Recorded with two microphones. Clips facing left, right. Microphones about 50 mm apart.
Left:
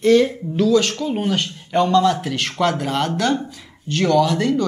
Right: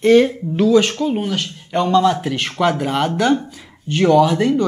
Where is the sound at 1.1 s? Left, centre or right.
Centre.